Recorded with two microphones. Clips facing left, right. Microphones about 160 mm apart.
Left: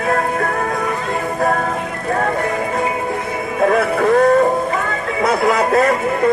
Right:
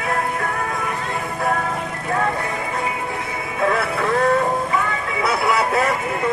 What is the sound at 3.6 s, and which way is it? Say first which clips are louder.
Music: left 6 dB; 40° left (ahead or behind).